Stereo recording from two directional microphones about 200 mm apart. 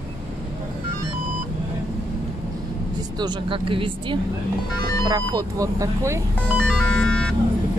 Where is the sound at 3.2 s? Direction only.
20° right (ahead or behind).